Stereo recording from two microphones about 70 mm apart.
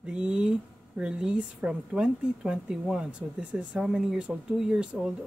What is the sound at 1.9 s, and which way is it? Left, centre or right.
Speech, centre.